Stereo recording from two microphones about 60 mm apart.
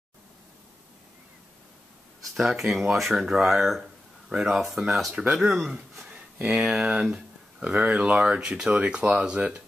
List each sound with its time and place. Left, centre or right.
2.3 s speech: centre